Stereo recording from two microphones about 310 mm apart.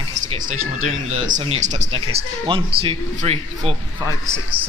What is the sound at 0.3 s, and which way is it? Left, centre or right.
Speech, centre.